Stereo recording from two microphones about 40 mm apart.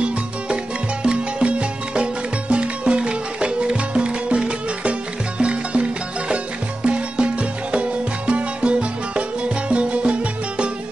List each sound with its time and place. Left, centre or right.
1.0 s music: right
5.4 s music: right